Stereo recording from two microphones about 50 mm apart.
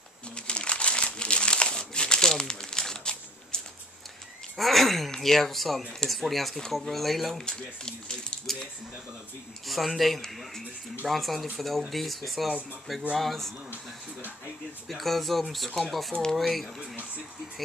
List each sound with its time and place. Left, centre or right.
0.5 s crumpling: left
4.6 s speech: centre
7.4 s speech: centre
9.7 s speech: centre
14.9 s speech: centre